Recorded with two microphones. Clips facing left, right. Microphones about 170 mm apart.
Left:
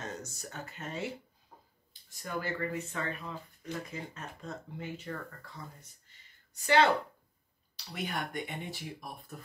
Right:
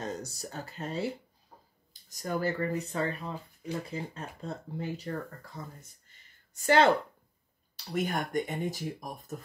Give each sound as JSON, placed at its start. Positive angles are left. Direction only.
{"t": 0.0, "sound": "speech", "side_deg": -35}